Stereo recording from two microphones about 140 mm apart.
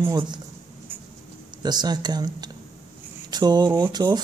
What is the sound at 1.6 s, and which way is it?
Speech, 30° right (ahead or behind).